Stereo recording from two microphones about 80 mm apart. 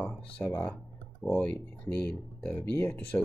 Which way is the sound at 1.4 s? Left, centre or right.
Centre.